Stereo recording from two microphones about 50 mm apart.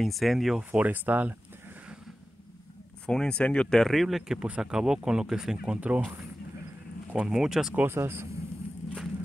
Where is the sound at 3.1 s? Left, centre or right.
Centre.